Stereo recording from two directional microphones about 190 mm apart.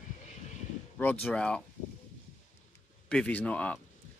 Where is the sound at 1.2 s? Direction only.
5° left (ahead or behind).